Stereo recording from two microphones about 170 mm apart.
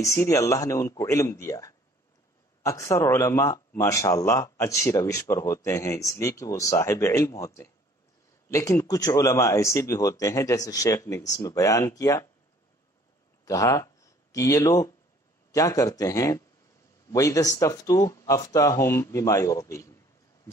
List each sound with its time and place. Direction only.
0.0 s speech: 20° left (ahead or behind)
13.5 s speech: 20° left (ahead or behind)